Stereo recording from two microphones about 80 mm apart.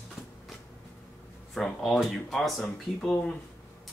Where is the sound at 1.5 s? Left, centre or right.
Centre.